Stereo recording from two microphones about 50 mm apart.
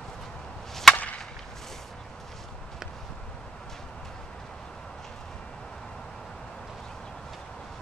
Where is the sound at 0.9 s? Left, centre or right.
Left.